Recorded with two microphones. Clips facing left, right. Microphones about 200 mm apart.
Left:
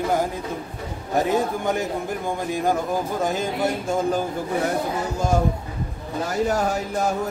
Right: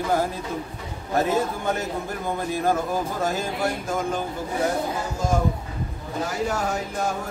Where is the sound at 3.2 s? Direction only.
20° left (ahead or behind).